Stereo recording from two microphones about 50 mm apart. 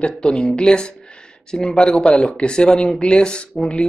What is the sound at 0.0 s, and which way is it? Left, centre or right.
Speech, centre.